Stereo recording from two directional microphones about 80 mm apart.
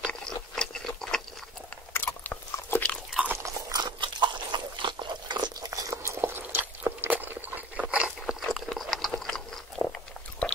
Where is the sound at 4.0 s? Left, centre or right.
Right.